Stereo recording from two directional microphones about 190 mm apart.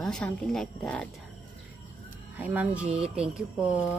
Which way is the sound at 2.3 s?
10° right (ahead or behind).